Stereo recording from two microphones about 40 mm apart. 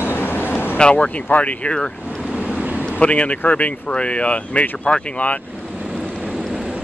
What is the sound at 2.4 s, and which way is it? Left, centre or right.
Waves, right.